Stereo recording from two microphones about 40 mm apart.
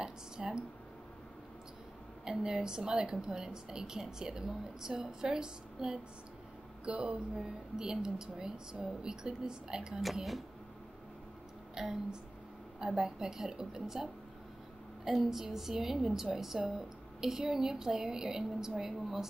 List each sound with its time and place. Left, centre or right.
0.0 s a sound: right
2.2 s a woman's voice: centre
11.7 s a woman's voice: centre